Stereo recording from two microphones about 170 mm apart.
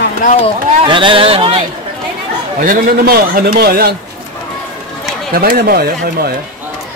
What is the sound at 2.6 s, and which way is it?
A man's voice, 60° right (ahead or behind).